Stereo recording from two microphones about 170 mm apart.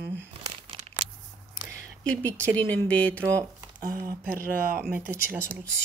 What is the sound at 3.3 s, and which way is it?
Speech, 20° right (ahead or behind).